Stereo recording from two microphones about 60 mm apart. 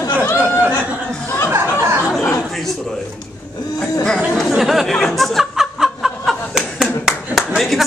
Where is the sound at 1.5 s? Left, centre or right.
Right.